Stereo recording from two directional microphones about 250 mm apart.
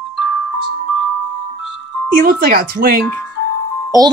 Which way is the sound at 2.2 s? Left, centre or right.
Right.